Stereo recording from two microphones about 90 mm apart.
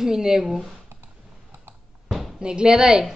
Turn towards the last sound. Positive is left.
turn(degrees=-5)  # may be behind; listen again after turning